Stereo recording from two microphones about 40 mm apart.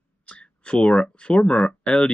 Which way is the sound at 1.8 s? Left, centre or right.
Centre.